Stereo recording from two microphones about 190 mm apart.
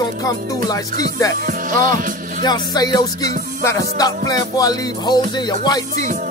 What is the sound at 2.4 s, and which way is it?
Music, 20° left (ahead or behind).